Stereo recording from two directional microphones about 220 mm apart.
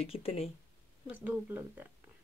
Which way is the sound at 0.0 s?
25° left (ahead or behind).